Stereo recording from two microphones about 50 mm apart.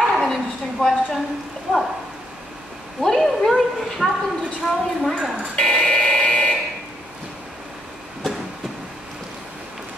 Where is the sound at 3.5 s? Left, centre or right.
Centre.